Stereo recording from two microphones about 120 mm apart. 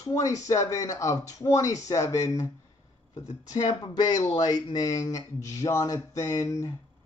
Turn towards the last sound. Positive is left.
turn(degrees=25)  # may be behind; listen again after turning